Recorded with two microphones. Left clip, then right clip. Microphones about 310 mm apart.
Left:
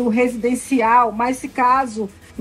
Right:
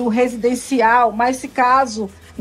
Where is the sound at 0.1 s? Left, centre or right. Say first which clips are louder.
Right 4 dB; right.